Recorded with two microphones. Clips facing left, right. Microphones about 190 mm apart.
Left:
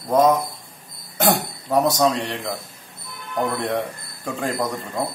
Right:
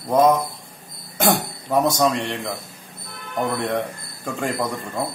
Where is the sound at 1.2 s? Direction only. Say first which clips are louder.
Even; centre (ahead or behind).